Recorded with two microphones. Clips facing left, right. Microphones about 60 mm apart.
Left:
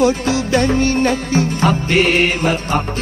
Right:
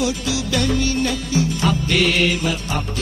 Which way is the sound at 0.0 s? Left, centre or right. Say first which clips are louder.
Left 7 dB; left.